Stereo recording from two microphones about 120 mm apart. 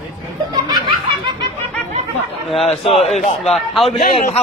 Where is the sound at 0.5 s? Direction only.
35° right (ahead or behind).